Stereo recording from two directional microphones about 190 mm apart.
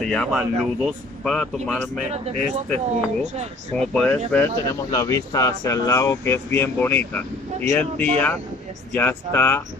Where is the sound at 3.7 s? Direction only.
5° left (ahead or behind).